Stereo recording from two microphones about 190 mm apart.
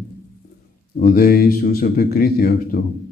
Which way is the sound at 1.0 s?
50° left (ahead or behind).